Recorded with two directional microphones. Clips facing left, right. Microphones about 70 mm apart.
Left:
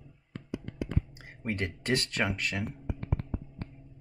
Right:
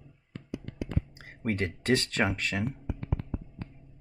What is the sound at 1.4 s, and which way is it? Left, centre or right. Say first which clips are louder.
Speech: right 3 dB; right.